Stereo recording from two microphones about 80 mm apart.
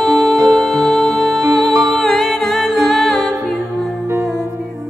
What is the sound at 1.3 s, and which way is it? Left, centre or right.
Music, right.